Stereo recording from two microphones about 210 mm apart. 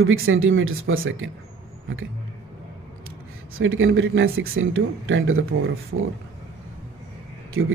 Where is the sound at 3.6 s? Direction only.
70° right (ahead or behind).